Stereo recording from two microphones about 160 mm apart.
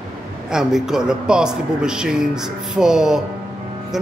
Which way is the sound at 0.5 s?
5° right (ahead or behind).